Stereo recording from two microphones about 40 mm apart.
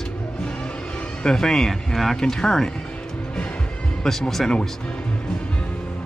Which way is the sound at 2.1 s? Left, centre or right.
Centre.